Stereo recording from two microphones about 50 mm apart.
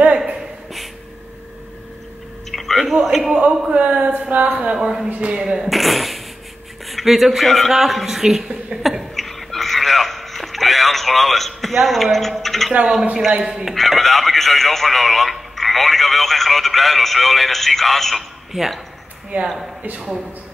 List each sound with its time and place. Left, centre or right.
2.5 s a sound: centre
3.3 s a woman's voice: right
4.7 s a woman's voice: centre
5.7 s speech: centre
9.1 s a sound: centre
13.4 s speech: centre
13.7 s speech: centre
19.3 s a woman's voice: right